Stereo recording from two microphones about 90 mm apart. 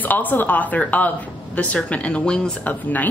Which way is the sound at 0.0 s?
20° left (ahead or behind).